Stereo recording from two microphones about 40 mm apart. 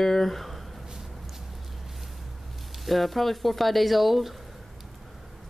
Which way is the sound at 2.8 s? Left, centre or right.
Centre.